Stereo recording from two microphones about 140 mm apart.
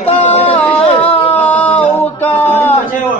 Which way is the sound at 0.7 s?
40° left (ahead or behind).